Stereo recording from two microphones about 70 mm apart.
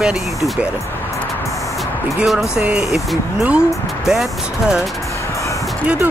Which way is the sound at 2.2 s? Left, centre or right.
Centre.